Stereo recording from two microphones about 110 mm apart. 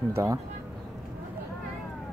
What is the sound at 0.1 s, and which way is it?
Speech, 30° right (ahead or behind).